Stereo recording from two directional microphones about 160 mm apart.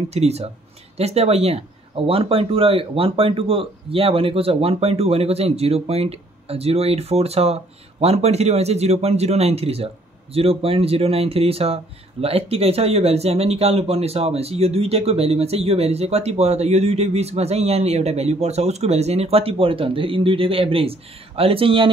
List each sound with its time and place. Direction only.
0.1 s speech: 40° right (ahead or behind)